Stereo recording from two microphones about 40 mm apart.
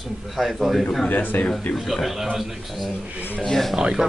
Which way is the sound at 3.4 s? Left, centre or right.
Centre.